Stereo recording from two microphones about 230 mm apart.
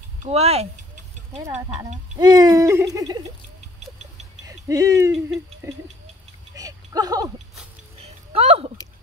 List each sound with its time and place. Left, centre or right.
0.2 s speech: right
2.1 s owl: centre
4.5 s speech: centre
5.6 s owl: centre
6.5 s a sound: centre
8.0 s a sound: right